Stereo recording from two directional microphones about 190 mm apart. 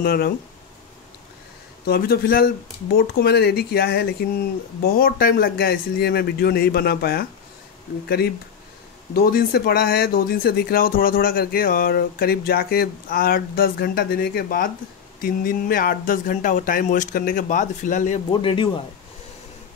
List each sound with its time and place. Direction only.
0.0 s speech: 50° left (ahead or behind)
1.9 s speech: 50° left (ahead or behind)
9.1 s speech: 50° left (ahead or behind)
18.3 s speech: 25° left (ahead or behind)